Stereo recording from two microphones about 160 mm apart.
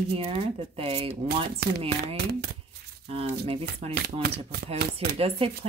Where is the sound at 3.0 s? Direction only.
35° right (ahead or behind).